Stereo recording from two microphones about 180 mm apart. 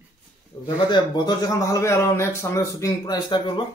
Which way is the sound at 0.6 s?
25° left (ahead or behind).